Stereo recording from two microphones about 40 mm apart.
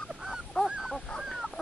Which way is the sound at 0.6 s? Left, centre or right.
Centre.